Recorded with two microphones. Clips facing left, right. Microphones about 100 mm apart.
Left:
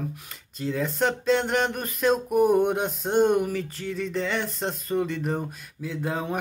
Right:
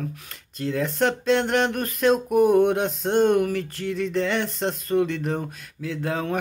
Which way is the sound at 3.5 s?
65° right (ahead or behind).